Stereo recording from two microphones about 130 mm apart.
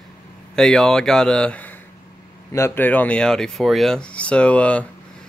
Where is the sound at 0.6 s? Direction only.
5° left (ahead or behind).